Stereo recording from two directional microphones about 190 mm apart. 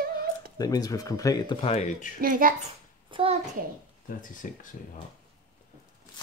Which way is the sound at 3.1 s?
30° right (ahead or behind).